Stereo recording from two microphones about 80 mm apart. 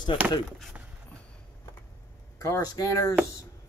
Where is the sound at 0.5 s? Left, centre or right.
Centre.